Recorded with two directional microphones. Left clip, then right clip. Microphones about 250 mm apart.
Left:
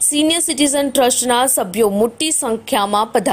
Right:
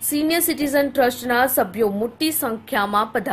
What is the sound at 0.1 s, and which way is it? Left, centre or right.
A woman's voice, left.